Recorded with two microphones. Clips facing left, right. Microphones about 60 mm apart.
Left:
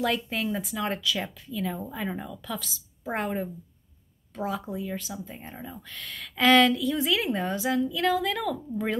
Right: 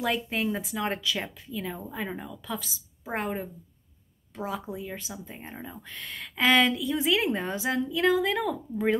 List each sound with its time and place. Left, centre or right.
0.0 s speech: centre
0.7 s a woman's voice: right
1.5 s speech: centre
3.1 s a woman's voice: centre; by 6.3 s right
6.3 s a woman's voice: centre